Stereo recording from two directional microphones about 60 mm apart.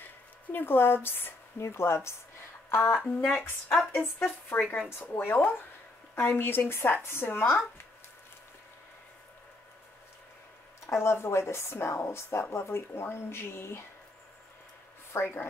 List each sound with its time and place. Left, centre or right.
0.5 s speech: left
3.7 s a woman's voice: centre
4.5 s speech: centre
5.0 s speech: left
10.9 s speech: left
15.1 s speech: left